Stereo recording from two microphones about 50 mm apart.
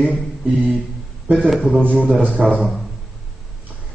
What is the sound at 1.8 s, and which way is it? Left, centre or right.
Speech, right.